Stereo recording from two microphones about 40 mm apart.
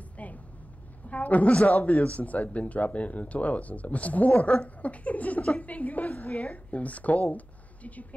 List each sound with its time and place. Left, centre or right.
0.2 s vehicle: left
1.0 s a woman's voice: left